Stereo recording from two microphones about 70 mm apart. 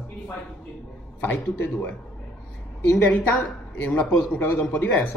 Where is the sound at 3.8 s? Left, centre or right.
Left.